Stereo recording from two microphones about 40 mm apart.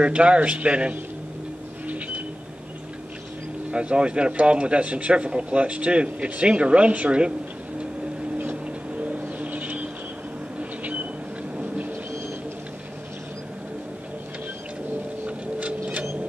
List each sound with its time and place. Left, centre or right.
0.0 s speech: right
1.9 s vehicle: right
3.7 s a man's voice: right
8.4 s vehicle: right
9.4 s vehicle: right